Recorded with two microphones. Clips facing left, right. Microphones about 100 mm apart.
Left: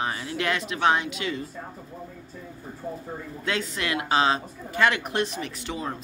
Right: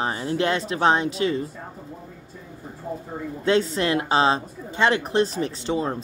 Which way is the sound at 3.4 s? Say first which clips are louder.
Right 9 dB; 30° right (ahead or behind).